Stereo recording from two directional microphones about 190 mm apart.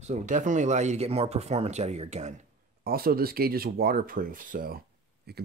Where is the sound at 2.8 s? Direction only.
50° right (ahead or behind).